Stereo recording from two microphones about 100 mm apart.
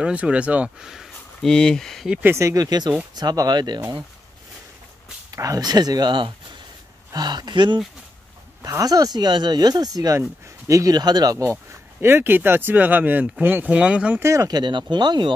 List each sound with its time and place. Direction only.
0.0 s speech: 10° right (ahead or behind); by 2.0 s 5° left (ahead or behind)
2.2 s speech: 30° right (ahead or behind); by 3.8 s 45° right (ahead or behind)
5.3 s speech: 35° right (ahead or behind)
8.6 s speech: 35° right (ahead or behind)
12.0 s speech: 25° right (ahead or behind)
14.2 s speech: 30° right (ahead or behind)
14.5 s speech: 50° right (ahead or behind)